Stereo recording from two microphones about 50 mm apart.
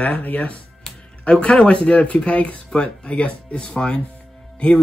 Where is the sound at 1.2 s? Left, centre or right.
Left.